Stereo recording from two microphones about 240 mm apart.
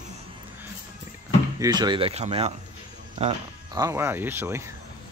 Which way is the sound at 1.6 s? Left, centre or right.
Centre.